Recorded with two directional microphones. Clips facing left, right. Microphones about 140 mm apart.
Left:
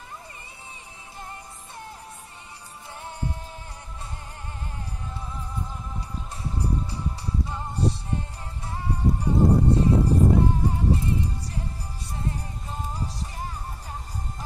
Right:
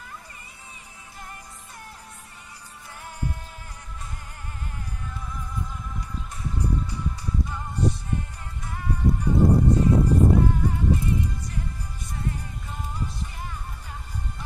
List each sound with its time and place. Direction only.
3.0 s music: 25° left (ahead or behind)
5.9 s music: 30° left (ahead or behind)
12.1 s music: 30° left (ahead or behind)